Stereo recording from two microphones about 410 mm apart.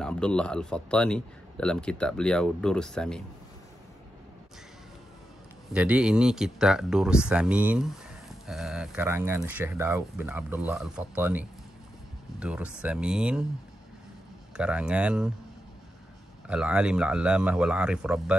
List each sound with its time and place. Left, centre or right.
0.0 s speech: centre
5.7 s speech: centre
14.6 s speech: centre
16.4 s speech: centre